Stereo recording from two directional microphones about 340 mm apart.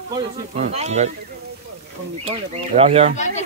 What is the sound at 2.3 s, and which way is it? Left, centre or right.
Speech, centre.